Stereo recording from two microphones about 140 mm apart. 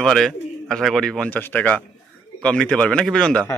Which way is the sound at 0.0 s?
5° left (ahead or behind).